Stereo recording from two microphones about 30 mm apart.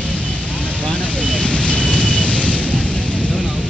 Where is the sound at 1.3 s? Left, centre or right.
Left.